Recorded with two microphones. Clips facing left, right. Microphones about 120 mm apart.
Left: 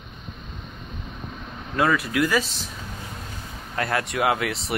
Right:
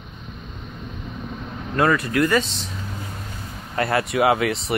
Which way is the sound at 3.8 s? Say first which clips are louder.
Right 4 dB; centre (ahead or behind).